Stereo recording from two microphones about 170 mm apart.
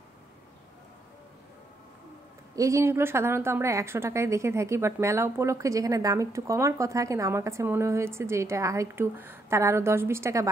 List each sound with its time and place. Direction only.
2.5 s a woman's voice: 20° right (ahead or behind)